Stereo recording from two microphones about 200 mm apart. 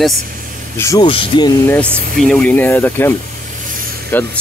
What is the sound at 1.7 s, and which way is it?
Speech, 5° left (ahead or behind).